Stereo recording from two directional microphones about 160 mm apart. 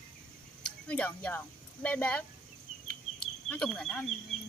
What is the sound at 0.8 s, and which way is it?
Speech, 10° left (ahead or behind).